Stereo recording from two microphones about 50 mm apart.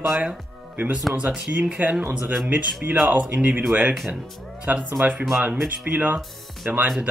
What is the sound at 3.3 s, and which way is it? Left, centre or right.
Speech, right.